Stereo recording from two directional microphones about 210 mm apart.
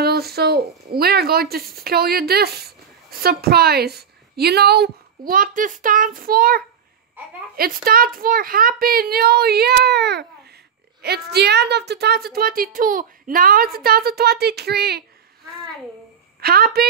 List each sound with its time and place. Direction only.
0.0 s speech: 50° right (ahead or behind)
16.3 s a woman's voice: 45° right (ahead or behind)